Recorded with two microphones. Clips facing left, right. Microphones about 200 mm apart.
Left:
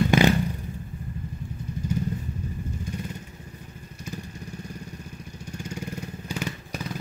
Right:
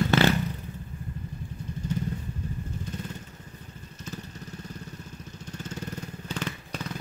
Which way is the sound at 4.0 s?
10° left (ahead or behind).